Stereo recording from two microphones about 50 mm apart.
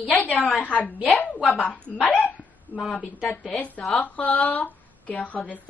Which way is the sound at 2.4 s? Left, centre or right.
Left.